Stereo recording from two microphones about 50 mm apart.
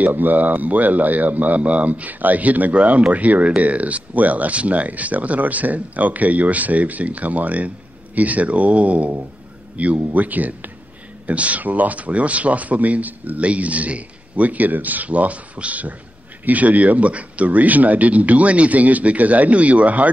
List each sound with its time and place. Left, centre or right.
0.0 s speech: right